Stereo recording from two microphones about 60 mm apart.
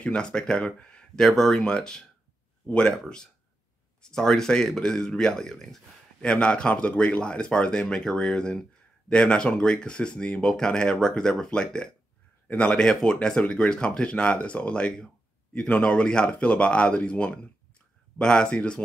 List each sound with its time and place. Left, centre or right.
0.0 s speech: centre
4.0 s speech: centre
6.2 s a man's voice: centre
12.7 s speech: centre